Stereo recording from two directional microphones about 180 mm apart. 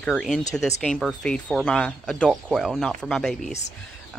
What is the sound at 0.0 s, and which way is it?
Speech, centre (ahead or behind).